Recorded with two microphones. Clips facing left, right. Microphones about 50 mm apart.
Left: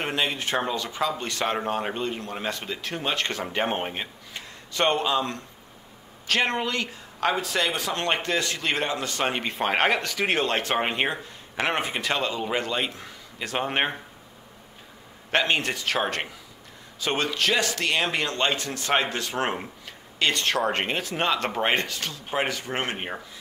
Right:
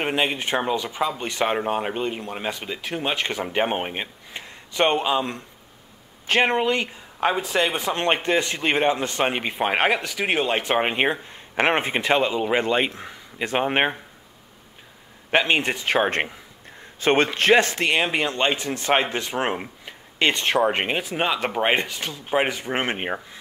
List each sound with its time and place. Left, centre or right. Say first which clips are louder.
0.0 s speech: right 3 dB; right
9.3 s speech: right 2 dB; centre
11.5 s speech: right 5 dB; right
15.3 s speech: right 3 dB; centre